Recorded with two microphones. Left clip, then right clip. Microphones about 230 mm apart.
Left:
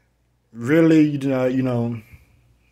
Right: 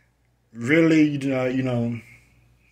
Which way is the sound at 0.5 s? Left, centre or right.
Left.